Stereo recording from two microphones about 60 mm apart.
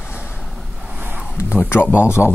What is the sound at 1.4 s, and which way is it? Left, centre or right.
Speech, left.